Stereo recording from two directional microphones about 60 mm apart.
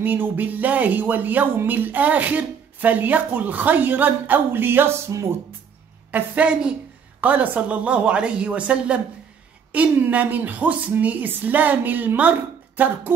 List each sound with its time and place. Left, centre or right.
0.0 s speech: right
6.1 s a woman's voice: right